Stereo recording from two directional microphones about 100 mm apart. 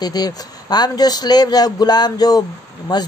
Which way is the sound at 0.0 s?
40° left (ahead or behind).